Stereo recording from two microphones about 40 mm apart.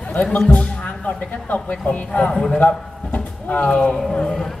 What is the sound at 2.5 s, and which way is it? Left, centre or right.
Speech, left.